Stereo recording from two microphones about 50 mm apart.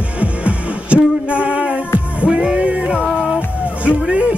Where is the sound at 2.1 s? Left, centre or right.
Right.